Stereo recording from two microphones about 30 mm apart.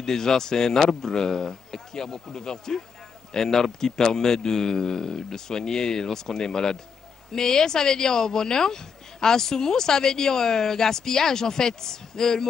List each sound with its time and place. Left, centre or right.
0.0 s a man's voice: centre